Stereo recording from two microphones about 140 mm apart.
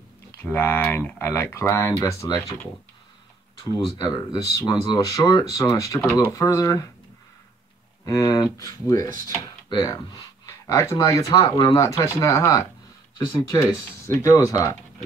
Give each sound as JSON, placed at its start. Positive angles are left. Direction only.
{"t": 0.4, "sound": "speech", "side_deg": 15}
{"t": 3.5, "sound": "speech", "side_deg": 25}
{"t": 8.0, "sound": "speech", "side_deg": 25}